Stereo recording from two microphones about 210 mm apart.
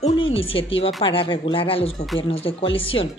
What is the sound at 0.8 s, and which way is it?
A woman's voice, 25° left (ahead or behind).